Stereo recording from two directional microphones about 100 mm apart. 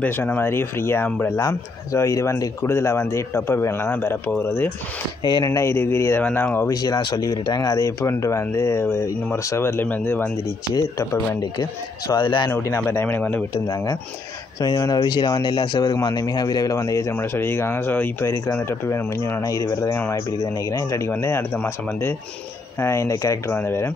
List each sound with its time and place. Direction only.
0.0 s speech: 20° left (ahead or behind)
5.2 s speech: 40° left (ahead or behind); by 6.7 s 20° left (ahead or behind)
6.7 s speech: 40° left (ahead or behind); by 10.3 s 20° left (ahead or behind)
10.7 s speech: 35° left (ahead or behind)
12.2 s speech: 55° left (ahead or behind)
12.8 s speech: 20° left (ahead or behind)
14.6 s speech: 40° left (ahead or behind)
17.1 s speech: 25° left (ahead or behind)